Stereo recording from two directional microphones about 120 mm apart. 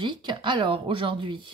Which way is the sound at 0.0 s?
40° right (ahead or behind).